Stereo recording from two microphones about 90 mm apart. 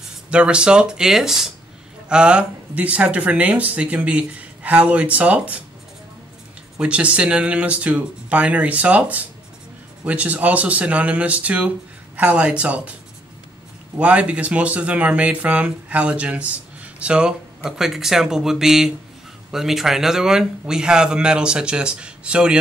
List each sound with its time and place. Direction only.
0.3 s speech: 10° right (ahead or behind)
6.8 s speech: 15° right (ahead or behind)
13.9 s speech: 15° right (ahead or behind)